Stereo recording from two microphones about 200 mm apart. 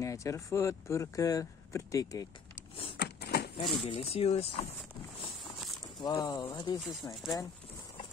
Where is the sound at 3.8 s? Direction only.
30° left (ahead or behind).